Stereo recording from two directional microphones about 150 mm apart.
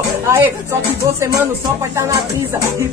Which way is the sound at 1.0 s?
20° right (ahead or behind).